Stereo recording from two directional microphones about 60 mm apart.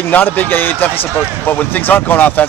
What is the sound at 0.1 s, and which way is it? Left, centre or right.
Speech, left.